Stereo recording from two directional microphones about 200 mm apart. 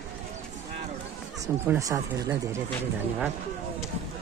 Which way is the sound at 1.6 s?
15° right (ahead or behind).